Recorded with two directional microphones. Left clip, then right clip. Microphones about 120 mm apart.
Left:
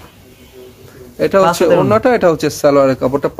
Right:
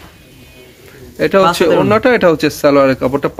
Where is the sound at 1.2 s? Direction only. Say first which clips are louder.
Right 1 dB; centre (ahead or behind).